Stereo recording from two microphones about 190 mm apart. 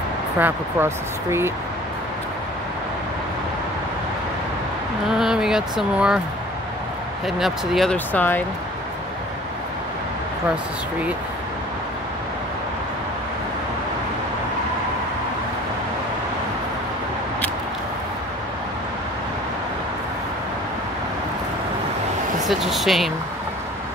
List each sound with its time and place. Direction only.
0.4 s speech: 10° right (ahead or behind)
5.1 s speech: 5° right (ahead or behind)
7.2 s speech: centre (ahead or behind)
22.5 s speech: centre (ahead or behind)